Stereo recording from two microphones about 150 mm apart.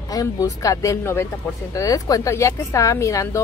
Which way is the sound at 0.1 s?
20° left (ahead or behind).